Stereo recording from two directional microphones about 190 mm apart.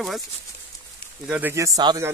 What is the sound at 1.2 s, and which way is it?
Speech, 10° right (ahead or behind).